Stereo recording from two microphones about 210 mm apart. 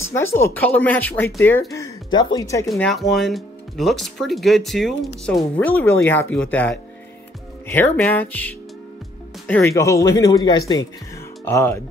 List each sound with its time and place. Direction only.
0.1 s speech: 10° left (ahead or behind)
2.7 s speech: centre (ahead or behind)